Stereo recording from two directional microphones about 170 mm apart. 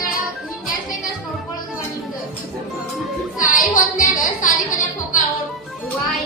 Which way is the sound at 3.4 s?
50° left (ahead or behind).